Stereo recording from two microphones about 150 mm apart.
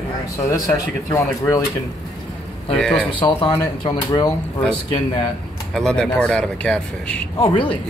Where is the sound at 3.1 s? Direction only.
35° left (ahead or behind).